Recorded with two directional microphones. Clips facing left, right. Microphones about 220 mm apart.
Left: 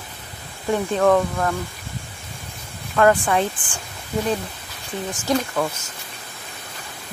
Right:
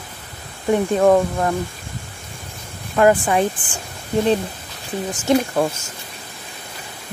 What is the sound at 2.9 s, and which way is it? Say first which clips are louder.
Speech: right 2 dB; 15° right (ahead or behind).